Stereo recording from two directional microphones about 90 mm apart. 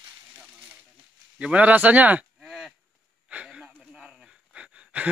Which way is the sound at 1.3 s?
15° right (ahead or behind).